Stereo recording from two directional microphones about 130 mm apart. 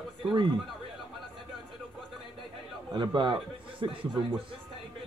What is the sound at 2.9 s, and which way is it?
A man's voice, 35° right (ahead or behind).